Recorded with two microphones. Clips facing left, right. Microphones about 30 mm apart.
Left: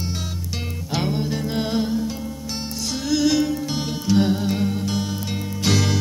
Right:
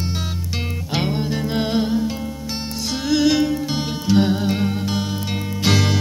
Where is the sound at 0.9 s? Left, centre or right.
Right.